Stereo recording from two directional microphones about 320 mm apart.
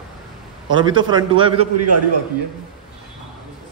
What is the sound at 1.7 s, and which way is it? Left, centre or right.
Speech, right.